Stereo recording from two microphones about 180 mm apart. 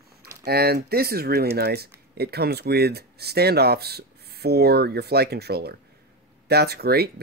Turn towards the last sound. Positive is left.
turn(degrees=-60)  # may be behind; listen again after turning